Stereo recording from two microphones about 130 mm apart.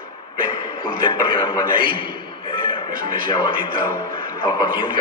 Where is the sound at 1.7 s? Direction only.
90° right.